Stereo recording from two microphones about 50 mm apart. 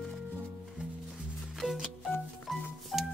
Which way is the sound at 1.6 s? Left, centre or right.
Right.